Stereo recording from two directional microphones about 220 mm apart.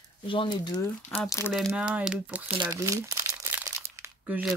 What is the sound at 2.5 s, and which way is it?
Crumpling, 20° right (ahead or behind).